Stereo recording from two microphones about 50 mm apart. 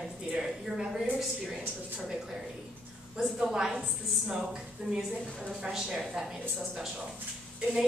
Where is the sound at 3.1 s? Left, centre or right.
Centre.